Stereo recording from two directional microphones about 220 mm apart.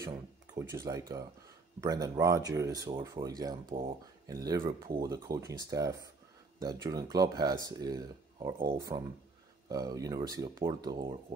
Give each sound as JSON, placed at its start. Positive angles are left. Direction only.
{"t": 0.6, "sound": "speech", "side_deg": -15}